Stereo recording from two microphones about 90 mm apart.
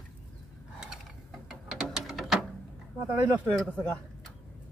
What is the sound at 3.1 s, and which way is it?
Speech, 15° right (ahead or behind).